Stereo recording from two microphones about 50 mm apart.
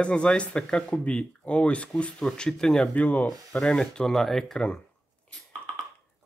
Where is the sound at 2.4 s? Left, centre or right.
Centre.